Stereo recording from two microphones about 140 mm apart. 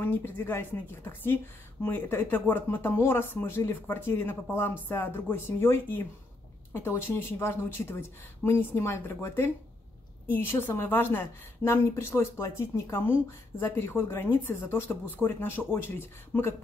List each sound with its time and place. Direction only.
0.0 s a woman's voice: 15° left (ahead or behind)